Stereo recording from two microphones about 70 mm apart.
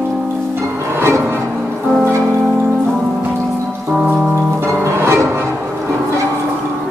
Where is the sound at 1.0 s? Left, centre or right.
Right.